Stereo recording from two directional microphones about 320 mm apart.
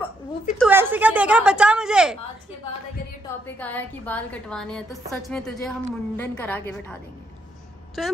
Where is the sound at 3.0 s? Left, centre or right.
Left.